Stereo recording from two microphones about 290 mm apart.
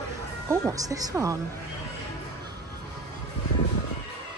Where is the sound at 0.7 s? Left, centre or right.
Centre.